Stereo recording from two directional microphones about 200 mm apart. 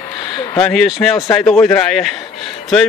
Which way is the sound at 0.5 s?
5° left (ahead or behind).